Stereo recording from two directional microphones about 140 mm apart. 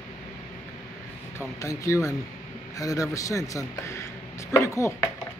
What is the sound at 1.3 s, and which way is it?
Speech, 20° left (ahead or behind).